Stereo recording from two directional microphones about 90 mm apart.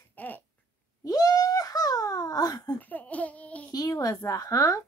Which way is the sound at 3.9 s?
40° left (ahead or behind).